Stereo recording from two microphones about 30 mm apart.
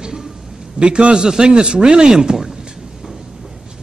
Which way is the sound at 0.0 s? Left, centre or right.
Centre.